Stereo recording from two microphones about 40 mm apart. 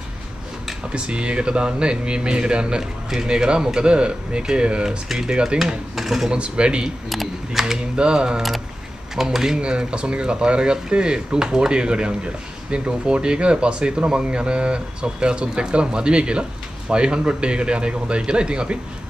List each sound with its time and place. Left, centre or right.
0.9 s speech: right
5.0 s speech: centre
5.3 s speech: right
5.9 s speech: centre
6.3 s speech: right
7.1 s camera: centre
7.9 s speech: right
9.1 s speech: centre
9.6 s speech: right